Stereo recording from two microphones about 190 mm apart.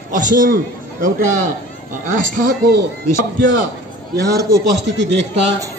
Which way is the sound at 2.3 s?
50° right (ahead or behind).